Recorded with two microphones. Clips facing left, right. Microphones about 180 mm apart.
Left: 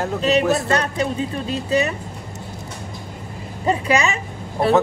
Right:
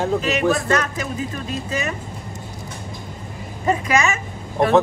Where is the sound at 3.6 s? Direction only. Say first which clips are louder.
Even; 30° left (ahead or behind).